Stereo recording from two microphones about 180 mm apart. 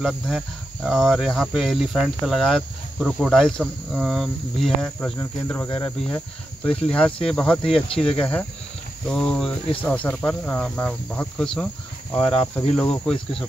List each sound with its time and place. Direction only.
0.8 s speech: centre (ahead or behind)